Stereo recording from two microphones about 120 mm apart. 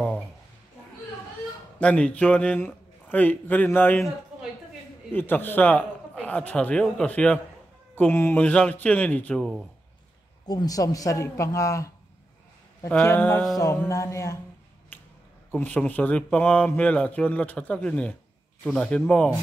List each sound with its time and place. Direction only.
1.8 s speech: 10° left (ahead or behind)
5.1 s speech: 15° left (ahead or behind)
10.4 s speech: 35° left (ahead or behind)
13.0 s speech: 20° left (ahead or behind)
14.9 s finger snapping: 15° left (ahead or behind)
15.5 s speech: 15° left (ahead or behind)